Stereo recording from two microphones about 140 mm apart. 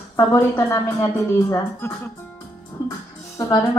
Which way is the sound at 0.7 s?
25° left (ahead or behind).